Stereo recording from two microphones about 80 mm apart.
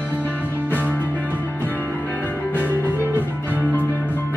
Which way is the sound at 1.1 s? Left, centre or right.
Right.